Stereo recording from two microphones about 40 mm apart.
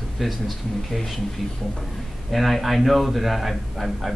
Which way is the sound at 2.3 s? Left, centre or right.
Centre.